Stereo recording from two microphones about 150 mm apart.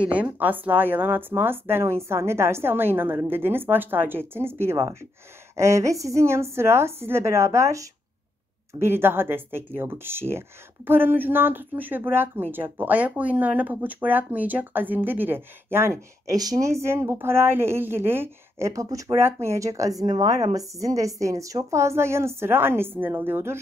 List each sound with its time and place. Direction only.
0.0 s a woman's voice: 10° right (ahead or behind)